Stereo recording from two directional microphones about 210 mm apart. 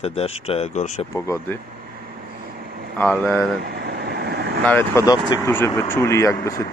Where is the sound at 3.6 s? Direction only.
45° right (ahead or behind).